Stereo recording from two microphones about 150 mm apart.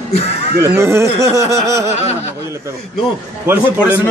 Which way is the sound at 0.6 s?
20° right (ahead or behind).